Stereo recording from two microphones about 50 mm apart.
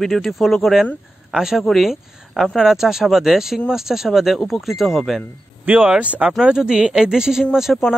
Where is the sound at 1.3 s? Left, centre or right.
Centre.